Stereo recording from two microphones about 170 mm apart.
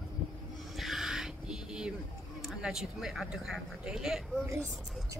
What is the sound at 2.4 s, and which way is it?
Speech, centre (ahead or behind).